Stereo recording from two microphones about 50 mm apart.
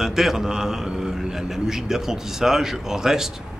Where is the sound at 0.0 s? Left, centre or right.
Centre.